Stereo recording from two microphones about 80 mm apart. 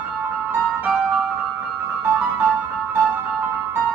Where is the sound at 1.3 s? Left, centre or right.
Centre.